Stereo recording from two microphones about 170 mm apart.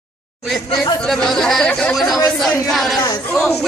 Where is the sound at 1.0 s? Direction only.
Centre (ahead or behind).